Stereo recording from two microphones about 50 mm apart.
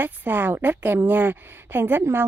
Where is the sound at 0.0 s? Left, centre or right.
Right.